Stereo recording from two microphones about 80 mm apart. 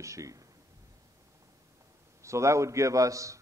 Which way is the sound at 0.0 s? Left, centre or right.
Right.